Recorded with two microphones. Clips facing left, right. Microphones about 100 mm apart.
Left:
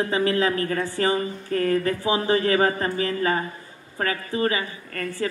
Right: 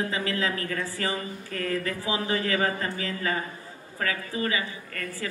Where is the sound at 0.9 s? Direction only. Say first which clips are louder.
Left 7 dB; 40° left (ahead or behind).